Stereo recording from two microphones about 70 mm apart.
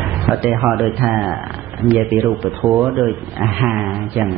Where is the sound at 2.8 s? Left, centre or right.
Centre.